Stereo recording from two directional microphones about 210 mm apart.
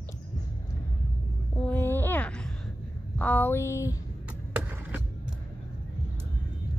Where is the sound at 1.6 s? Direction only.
10° left (ahead or behind).